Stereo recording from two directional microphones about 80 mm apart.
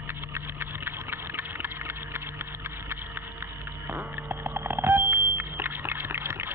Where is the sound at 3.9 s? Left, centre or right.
Right.